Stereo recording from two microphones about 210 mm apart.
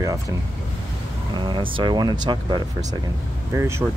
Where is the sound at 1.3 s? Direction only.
20° right (ahead or behind).